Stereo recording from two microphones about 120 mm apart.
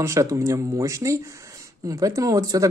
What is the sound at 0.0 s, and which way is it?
A woman's voice, 25° right (ahead or behind).